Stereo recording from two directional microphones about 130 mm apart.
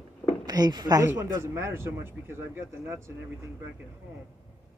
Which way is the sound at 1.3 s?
20° right (ahead or behind).